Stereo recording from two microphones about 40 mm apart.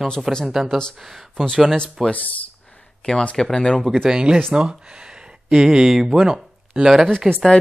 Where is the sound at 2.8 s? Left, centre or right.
Centre.